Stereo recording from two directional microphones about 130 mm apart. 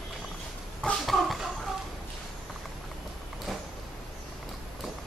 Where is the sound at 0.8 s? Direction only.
Centre (ahead or behind).